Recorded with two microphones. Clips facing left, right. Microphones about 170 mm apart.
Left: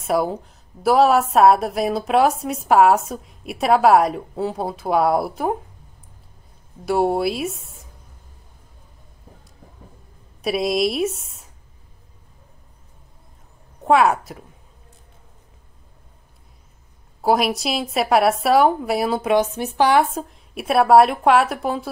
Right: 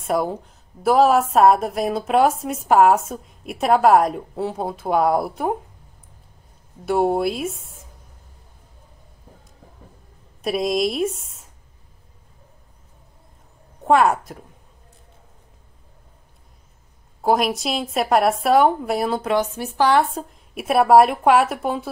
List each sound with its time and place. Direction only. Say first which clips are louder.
0.0 s speech: left 1 dB; centre (ahead or behind)
6.9 s speech: even; 5° left (ahead or behind)
10.4 s speech: left 1 dB; 5° left (ahead or behind)
13.8 s speech: even; centre (ahead or behind)
17.2 s speech: left 1 dB; centre (ahead or behind)
19.3 s speech: left 3 dB; 20° left (ahead or behind)
20.2 s speech: even; centre (ahead or behind)